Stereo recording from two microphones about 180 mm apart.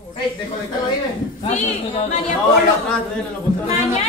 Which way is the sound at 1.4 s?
40° left (ahead or behind).